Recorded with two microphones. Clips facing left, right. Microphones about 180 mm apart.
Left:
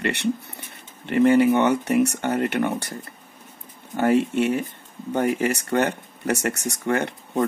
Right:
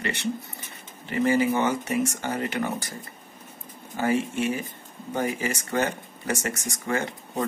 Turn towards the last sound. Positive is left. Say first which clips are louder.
# left 4 dB
turn(degrees=65)  # may be behind; listen again after turning